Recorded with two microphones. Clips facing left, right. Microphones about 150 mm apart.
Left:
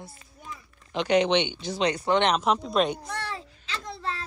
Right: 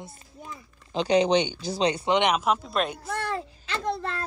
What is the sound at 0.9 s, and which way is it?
Speech, 35° right (ahead or behind).